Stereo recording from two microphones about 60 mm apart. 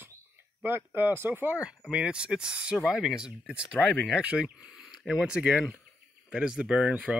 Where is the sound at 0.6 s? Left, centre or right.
Right.